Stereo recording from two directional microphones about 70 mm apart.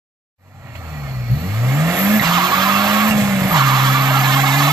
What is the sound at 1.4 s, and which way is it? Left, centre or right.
Vehicle, right.